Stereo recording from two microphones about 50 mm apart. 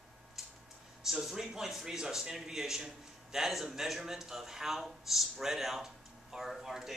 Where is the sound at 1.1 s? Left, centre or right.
Centre.